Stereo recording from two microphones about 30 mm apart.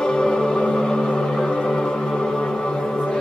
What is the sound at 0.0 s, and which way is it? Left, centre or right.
Music, left.